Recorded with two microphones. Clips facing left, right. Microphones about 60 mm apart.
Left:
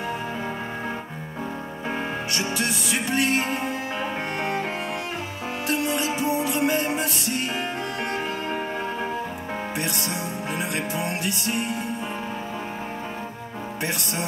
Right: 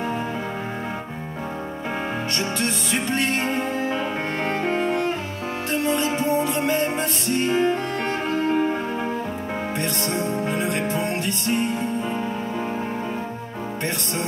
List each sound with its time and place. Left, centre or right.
3.1 s music: centre
5.9 s music: right
6.9 s music: centre
10.5 s music: centre
10.8 s music: right